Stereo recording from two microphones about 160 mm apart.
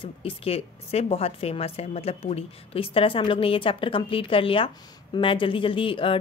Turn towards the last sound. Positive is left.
turn(degrees=35)  # may be behind; listen again after turning